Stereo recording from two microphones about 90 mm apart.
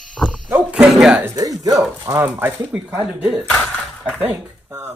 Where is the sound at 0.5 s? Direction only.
20° right (ahead or behind).